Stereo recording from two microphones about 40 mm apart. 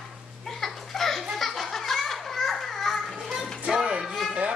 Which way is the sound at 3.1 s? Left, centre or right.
Centre.